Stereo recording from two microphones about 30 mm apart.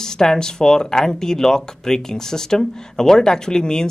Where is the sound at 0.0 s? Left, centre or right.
Centre.